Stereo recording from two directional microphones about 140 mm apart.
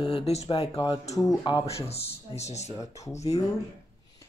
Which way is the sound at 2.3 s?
50° left (ahead or behind).